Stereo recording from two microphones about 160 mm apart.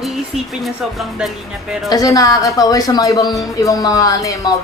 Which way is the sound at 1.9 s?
20° left (ahead or behind).